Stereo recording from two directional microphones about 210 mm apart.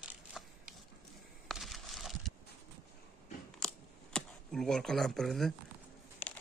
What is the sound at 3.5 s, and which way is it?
Camera, 5° left (ahead or behind).